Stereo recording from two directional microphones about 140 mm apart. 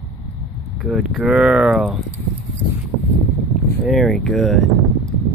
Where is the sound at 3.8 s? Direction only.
Centre (ahead or behind).